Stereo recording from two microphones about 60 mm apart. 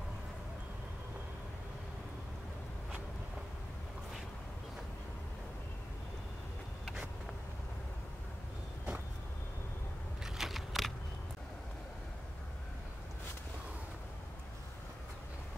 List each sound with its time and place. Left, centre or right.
10.2 s biting: centre